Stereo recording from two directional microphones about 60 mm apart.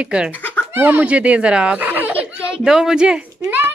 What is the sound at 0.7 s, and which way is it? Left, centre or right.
Speech, right.